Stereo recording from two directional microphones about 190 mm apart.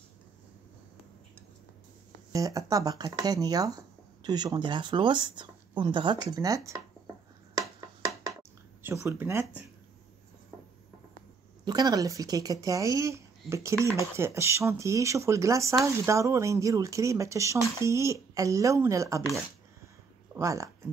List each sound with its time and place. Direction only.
2.3 s speech: 20° right (ahead or behind)
8.4 s a sound: 15° right (ahead or behind)
11.6 s speech: 20° right (ahead or behind)
20.3 s speech: 15° right (ahead or behind)